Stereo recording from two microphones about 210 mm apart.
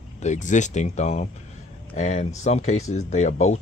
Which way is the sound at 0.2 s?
35° left (ahead or behind).